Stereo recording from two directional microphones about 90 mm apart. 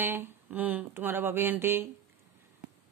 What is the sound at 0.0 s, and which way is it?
Speech, 25° right (ahead or behind).